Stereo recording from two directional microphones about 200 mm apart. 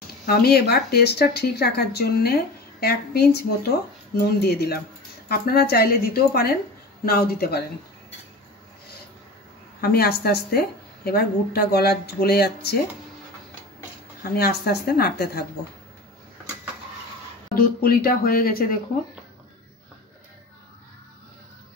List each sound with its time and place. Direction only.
0.3 s speech: 50° left (ahead or behind)
9.8 s speech: 50° left (ahead or behind)
14.3 s speech: 50° left (ahead or behind)
17.6 s speech: 50° left (ahead or behind)